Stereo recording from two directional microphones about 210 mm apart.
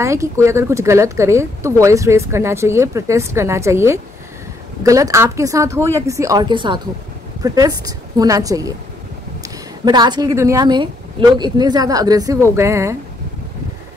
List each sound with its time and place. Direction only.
0.0 s speech: 15° right (ahead or behind)